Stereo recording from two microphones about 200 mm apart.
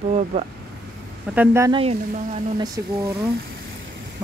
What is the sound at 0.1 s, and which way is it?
Speech, 35° right (ahead or behind).